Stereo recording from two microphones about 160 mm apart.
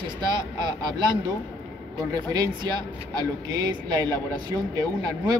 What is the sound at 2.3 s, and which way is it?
Speech, 25° right (ahead or behind).